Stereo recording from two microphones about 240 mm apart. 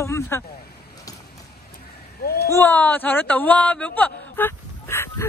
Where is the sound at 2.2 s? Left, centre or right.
Left.